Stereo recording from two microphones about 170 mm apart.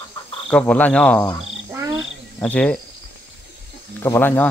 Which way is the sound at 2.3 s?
10° left (ahead or behind).